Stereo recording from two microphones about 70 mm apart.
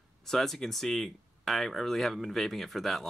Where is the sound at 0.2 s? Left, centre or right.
Centre.